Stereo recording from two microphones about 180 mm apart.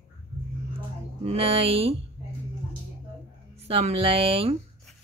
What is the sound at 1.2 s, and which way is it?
Speech, 35° right (ahead or behind).